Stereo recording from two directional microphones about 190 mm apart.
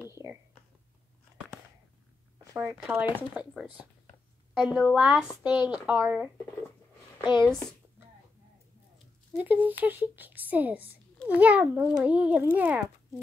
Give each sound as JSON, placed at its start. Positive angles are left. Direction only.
{"t": 0.1, "sound": "a sound", "side_deg": -15}
{"t": 2.6, "sound": "a woman's voice", "side_deg": -5}
{"t": 5.3, "sound": "speech", "side_deg": 25}
{"t": 5.9, "sound": "speech", "side_deg": -10}
{"t": 8.9, "sound": "speech", "side_deg": -10}